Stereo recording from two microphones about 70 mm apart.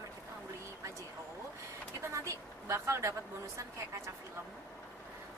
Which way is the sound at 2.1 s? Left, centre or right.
Right.